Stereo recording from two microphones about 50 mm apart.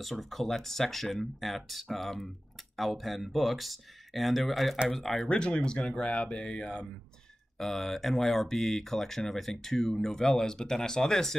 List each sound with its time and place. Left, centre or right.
0.0 s speech: centre
5.3 s speech: centre
7.5 s speech: centre